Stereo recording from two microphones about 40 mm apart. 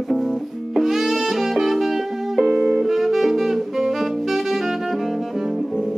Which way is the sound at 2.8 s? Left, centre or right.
Centre.